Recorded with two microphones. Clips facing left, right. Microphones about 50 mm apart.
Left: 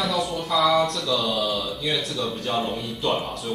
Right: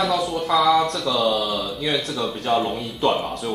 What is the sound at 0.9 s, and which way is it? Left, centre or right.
Speech, right.